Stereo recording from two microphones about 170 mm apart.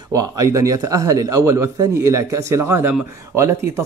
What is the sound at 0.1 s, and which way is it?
A man's voice, 20° right (ahead or behind).